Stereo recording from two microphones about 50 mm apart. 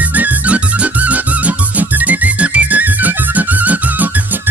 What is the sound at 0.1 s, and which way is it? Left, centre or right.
Music, right.